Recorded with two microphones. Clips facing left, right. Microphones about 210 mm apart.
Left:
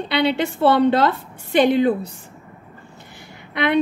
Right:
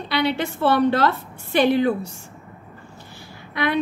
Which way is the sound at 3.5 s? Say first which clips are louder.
Left 3 dB; 20° left (ahead or behind).